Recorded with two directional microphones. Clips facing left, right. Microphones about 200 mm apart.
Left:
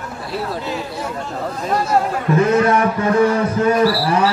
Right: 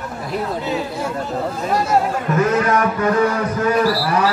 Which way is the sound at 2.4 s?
30° left (ahead or behind).